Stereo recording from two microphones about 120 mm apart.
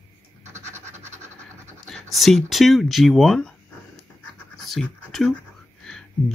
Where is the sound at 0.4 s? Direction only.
75° right (ahead or behind).